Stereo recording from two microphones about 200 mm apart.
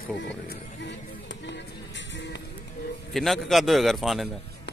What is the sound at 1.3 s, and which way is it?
Music, 65° left (ahead or behind).